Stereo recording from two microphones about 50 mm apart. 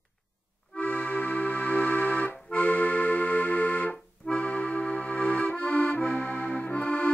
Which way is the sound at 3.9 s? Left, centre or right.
Left.